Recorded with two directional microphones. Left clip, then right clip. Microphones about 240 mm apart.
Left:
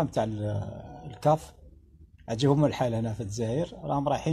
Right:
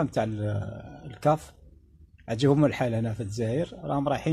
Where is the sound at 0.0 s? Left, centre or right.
Right.